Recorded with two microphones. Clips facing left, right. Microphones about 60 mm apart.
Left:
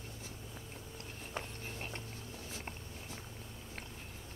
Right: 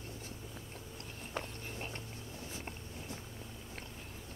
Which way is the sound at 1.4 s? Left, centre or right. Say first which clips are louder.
Right 2 dB; left.